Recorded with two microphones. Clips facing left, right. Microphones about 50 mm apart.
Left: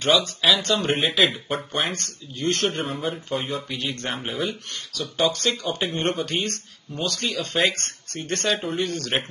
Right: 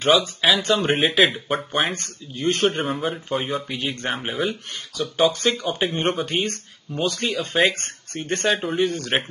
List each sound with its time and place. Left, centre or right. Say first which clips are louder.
0.0 s speech: right 2 dB; centre